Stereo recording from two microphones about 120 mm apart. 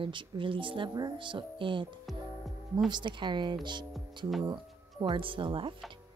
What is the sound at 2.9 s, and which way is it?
A woman's voice, 40° right (ahead or behind).